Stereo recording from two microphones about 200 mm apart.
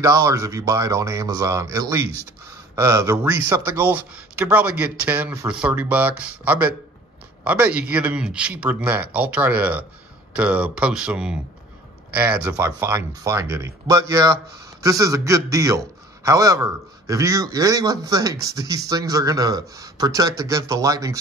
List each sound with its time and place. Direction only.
0.0 s speech: 15° right (ahead or behind)